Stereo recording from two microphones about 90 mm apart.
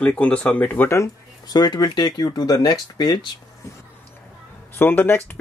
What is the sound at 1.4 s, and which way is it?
Speech, 50° left (ahead or behind).